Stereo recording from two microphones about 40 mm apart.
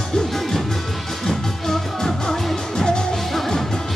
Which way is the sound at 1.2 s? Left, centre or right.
Centre.